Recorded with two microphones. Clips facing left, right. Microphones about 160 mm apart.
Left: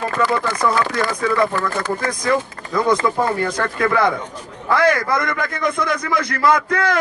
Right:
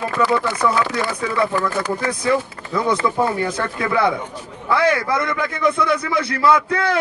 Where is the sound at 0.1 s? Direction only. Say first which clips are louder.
Right 3 dB; 40° left (ahead or behind).